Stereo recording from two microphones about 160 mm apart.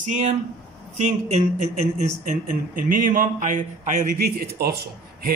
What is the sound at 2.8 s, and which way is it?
A man's voice, 60° right (ahead or behind).